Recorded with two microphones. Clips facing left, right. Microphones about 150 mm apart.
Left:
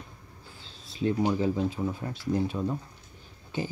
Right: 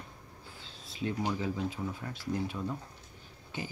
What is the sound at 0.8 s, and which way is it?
Speech, 30° left (ahead or behind).